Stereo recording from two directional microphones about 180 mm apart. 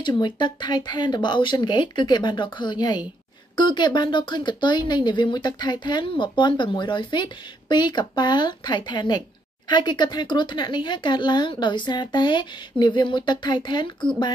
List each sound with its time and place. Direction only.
0.0 s speech: 25° left (ahead or behind)